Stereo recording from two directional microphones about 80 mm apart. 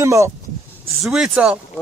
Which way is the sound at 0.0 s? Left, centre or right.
Right.